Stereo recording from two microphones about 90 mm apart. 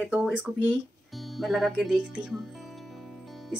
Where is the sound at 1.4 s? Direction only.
Centre (ahead or behind).